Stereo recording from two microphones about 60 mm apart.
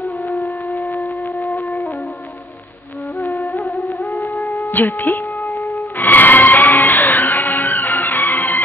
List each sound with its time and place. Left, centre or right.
0.7 s wind instrument: left
3.6 s music: centre
4.6 s music: left
5.7 s music: left